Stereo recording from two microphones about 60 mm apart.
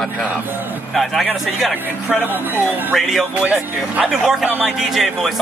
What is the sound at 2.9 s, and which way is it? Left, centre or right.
Speech, centre.